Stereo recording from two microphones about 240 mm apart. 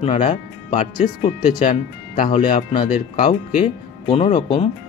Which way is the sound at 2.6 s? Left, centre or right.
Centre.